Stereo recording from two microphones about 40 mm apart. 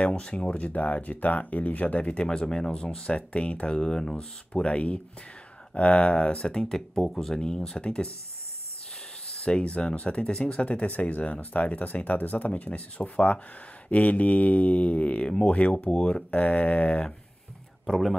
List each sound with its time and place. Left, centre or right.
0.0 s speech: left
2.2 s speech: centre
3.2 s speech: left; by 4.6 s centre
4.6 s speech: left
6.4 s speech: centre
9.3 s speech: left